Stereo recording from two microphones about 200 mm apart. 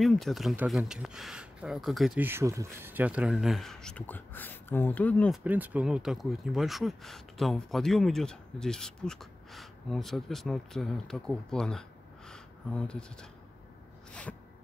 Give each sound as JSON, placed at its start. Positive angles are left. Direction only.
{"t": 0.0, "sound": "speech", "side_deg": 0}
{"t": 5.4, "sound": "speech", "side_deg": -10}